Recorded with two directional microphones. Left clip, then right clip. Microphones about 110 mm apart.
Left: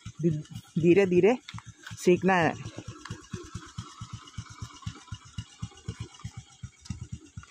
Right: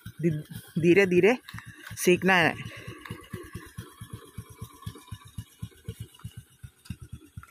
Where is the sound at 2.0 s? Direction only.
5° left (ahead or behind).